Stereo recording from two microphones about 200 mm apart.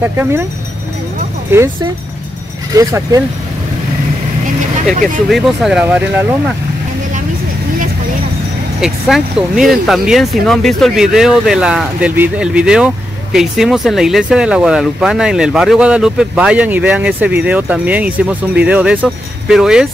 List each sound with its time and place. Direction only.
0.0 s speech: 10° right (ahead or behind)
2.7 s speech: 15° right (ahead or behind)
5.3 s speech: centre (ahead or behind)
8.8 s speech: centre (ahead or behind)